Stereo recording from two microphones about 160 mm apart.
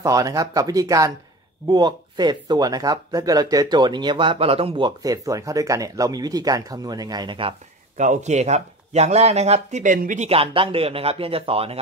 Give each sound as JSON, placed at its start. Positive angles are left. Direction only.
{"t": 0.0, "sound": "speech", "side_deg": -20}
{"t": 8.0, "sound": "speech", "side_deg": -50}